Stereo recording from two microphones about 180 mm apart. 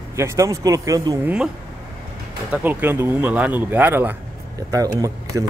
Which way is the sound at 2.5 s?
10° right (ahead or behind).